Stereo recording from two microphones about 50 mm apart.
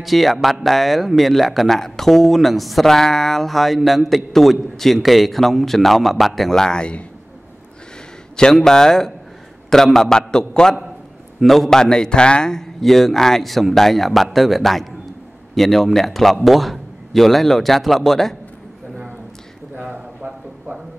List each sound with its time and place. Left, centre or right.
0.0 s speech: centre; by 7.1 s left
8.5 s a man's voice: centre
19.9 s a sound: centre